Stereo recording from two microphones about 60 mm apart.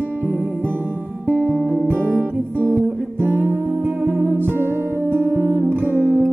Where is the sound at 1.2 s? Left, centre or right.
Right.